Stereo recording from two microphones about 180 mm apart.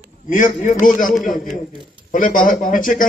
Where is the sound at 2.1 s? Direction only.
50° left (ahead or behind).